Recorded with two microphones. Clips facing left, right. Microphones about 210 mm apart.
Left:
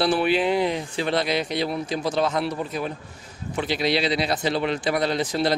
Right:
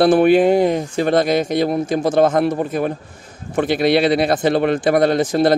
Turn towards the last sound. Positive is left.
turn(degrees=-50)  # may be behind; listen again after turning